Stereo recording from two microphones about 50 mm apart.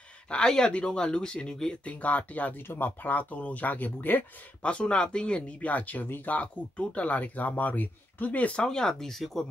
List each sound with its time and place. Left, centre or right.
0.3 s speech: centre
1.9 s speech: left
2.5 s speech: left
4.6 s speech: centre
8.6 s speech: centre